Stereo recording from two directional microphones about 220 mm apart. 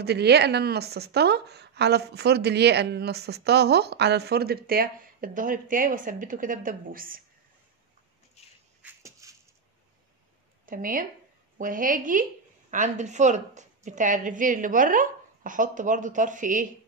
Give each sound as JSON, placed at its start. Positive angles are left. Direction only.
{"t": 0.0, "sound": "a woman's voice", "side_deg": -50}
{"t": 8.8, "sound": "a sound", "side_deg": -15}
{"t": 10.6, "sound": "a woman's voice", "side_deg": -40}